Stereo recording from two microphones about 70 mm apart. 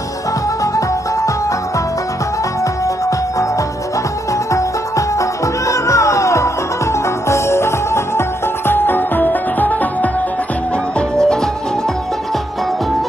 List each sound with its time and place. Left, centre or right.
2.6 s music: left
4.5 s music: left
11.0 s music: centre